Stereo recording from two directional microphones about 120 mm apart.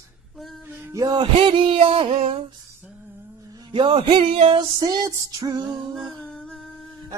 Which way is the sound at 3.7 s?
45° right (ahead or behind).